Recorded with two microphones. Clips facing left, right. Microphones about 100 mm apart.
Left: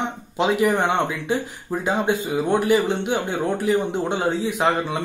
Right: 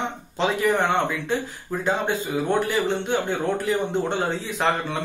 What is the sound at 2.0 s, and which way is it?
Speech, 15° left (ahead or behind).